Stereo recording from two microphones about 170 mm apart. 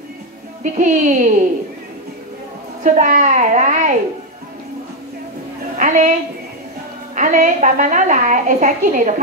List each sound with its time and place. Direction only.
0.7 s a woman's voice: 45° right (ahead or behind)
2.8 s a woman's voice: 45° right (ahead or behind)
5.8 s a woman's voice: 45° right (ahead or behind)
7.2 s a woman's voice: 50° right (ahead or behind)